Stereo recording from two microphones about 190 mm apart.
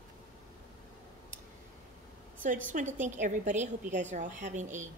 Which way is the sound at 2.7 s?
40° right (ahead or behind).